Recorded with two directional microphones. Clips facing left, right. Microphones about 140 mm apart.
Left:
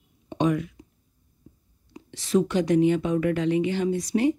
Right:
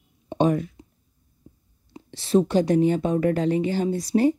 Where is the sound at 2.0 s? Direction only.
30° right (ahead or behind).